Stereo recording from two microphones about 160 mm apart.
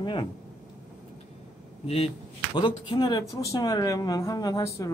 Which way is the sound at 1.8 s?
40° left (ahead or behind).